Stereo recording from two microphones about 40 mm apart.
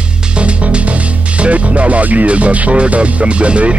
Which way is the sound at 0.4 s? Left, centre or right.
Right.